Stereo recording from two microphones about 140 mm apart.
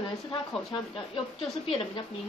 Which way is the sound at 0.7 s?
40° left (ahead or behind).